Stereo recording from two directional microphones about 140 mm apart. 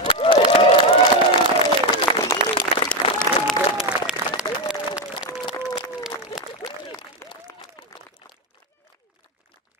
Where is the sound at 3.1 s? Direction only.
Centre (ahead or behind).